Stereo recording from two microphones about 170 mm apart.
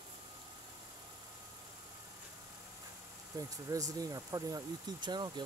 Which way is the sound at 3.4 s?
20° right (ahead or behind).